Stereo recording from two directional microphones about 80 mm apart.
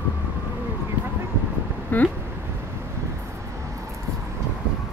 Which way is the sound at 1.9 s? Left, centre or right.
Left.